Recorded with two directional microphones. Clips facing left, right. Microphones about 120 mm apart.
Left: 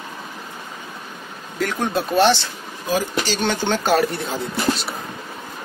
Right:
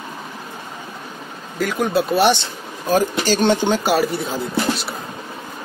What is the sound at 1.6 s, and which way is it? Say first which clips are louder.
Speech: right 3 dB; 5° right (ahead or behind).